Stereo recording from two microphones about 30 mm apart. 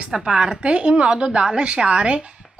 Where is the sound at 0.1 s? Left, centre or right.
Centre.